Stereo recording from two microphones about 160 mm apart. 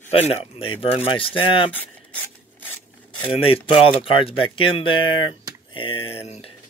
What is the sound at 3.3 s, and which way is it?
Speech, 35° left (ahead or behind).